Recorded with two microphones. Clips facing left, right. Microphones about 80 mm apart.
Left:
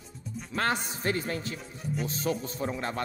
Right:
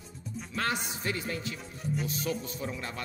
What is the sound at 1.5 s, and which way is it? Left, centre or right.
Speech, centre.